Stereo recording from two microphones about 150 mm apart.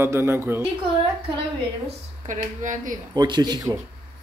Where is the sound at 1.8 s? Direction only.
55° right (ahead or behind).